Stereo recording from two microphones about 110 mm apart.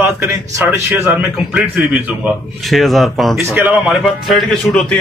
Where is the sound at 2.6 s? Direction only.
Centre (ahead or behind).